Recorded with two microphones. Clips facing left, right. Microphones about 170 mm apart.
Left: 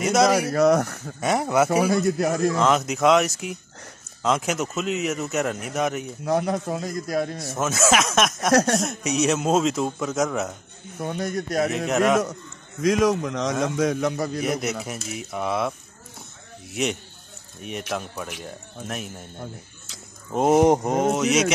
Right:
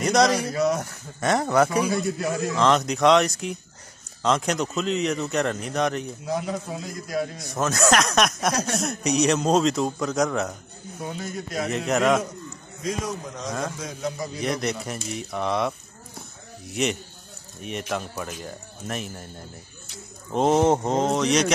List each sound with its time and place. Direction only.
0.0 s speech: 5° left (ahead or behind)
0.3 s speech: 60° left (ahead or behind)
1.2 s speech: 5° left (ahead or behind)
1.8 s speech: 65° left (ahead or behind)
2.5 s speech: 5° left (ahead or behind)
6.2 s speech: 70° left (ahead or behind)
7.4 s speech: 5° left (ahead or behind)
11.1 s speech: 70° left (ahead or behind)
11.7 s speech: centre (ahead or behind)
12.8 s a man's voice: 80° left
13.7 s speech: 70° left (ahead or behind)
14.4 s speech: 5° left (ahead or behind)
16.7 s speech: centre (ahead or behind)
20.2 s speech: 5° left (ahead or behind)